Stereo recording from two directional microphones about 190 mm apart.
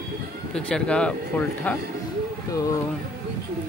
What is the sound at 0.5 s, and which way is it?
Speech, 5° left (ahead or behind).